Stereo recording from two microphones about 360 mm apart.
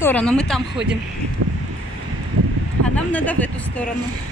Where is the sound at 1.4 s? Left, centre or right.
Right.